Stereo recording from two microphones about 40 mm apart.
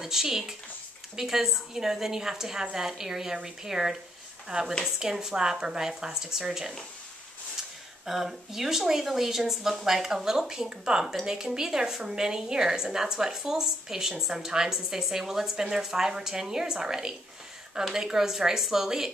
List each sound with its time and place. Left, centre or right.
0.0 s a woman's voice: centre
8.0 s a woman's voice: centre